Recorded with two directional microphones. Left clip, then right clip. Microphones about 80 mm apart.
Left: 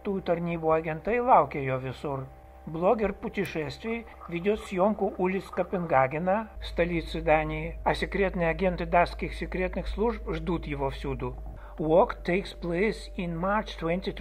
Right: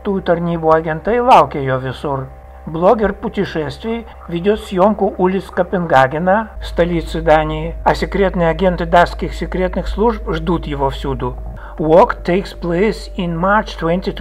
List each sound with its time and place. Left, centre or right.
0.1 s speech: left
13.3 s speech: left